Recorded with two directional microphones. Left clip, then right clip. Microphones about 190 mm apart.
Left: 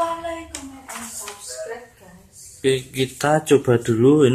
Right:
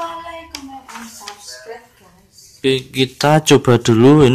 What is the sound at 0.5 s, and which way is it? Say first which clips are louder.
Clapping: right 3 dB; 10° right (ahead or behind).